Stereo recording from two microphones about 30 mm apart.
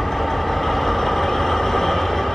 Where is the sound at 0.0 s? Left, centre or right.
Centre.